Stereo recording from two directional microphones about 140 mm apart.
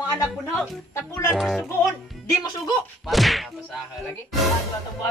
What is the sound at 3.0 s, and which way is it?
Speech, centre (ahead or behind).